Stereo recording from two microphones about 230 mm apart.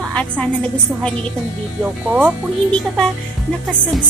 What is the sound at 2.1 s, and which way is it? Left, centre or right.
Speech, centre.